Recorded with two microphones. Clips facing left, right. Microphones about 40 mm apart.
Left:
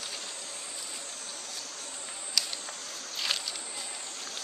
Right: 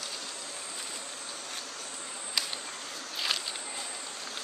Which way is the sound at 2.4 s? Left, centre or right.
Right.